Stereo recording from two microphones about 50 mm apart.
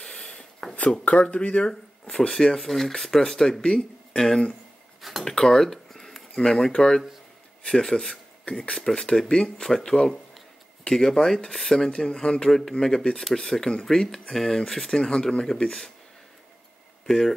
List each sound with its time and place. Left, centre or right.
0.0 s a sound: centre
1.1 s speech: centre
17.0 s speech: centre